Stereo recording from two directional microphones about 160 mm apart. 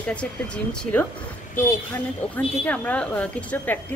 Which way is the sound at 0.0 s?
10° left (ahead or behind).